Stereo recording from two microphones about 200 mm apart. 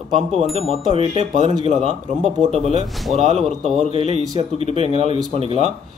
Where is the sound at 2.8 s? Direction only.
Centre (ahead or behind).